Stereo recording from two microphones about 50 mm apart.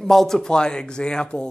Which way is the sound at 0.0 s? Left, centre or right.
Centre.